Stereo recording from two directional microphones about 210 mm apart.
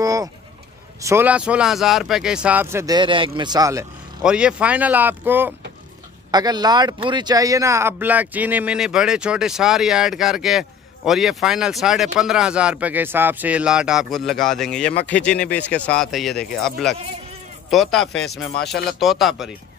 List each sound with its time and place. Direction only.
0.0 s vehicle: 15° right (ahead or behind)
1.0 s speech: 10° right (ahead or behind)
4.2 s speech: 5° right (ahead or behind)